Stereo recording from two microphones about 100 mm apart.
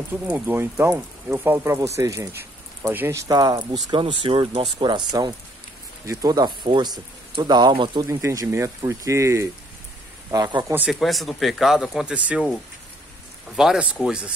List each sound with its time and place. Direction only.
0.1 s speech: 20° right (ahead or behind)
2.9 s speech: 20° right (ahead or behind)
3.2 s speech: 40° right (ahead or behind)
4.2 s speech: 55° right (ahead or behind)
8.1 s speech: 30° right (ahead or behind)
10.9 s speech: centre (ahead or behind)
13.6 s speech: 10° right (ahead or behind)